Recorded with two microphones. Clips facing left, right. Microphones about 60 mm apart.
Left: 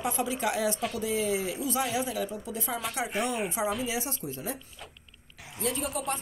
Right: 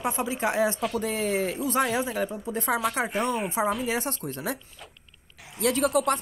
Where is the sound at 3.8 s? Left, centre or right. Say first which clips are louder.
Right 4 dB; right.